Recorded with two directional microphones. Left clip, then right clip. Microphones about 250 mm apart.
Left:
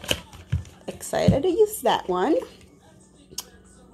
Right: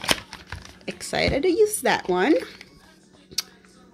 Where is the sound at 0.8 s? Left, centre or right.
Centre.